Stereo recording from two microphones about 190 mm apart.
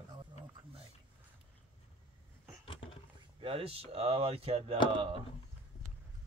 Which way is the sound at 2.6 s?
30° left (ahead or behind).